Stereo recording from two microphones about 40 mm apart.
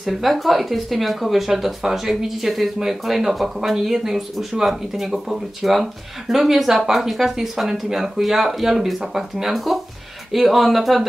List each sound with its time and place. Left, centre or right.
0.0 s speech: centre